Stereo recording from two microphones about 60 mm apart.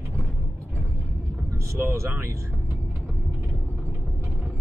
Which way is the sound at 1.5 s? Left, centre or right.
Right.